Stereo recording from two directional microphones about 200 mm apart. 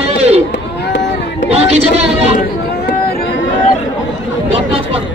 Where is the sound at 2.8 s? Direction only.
50° left (ahead or behind).